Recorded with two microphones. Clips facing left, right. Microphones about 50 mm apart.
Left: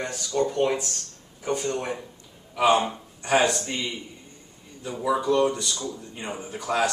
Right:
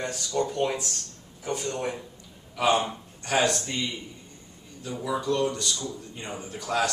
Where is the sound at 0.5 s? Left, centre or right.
Centre.